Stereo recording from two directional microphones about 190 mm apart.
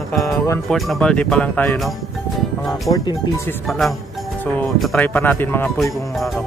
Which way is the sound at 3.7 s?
Centre (ahead or behind).